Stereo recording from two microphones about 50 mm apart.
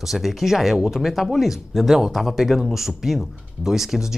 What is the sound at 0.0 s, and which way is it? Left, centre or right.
Speech, centre.